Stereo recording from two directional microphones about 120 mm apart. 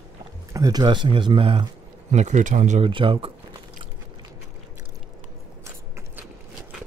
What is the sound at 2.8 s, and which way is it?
Speech, 45° right (ahead or behind).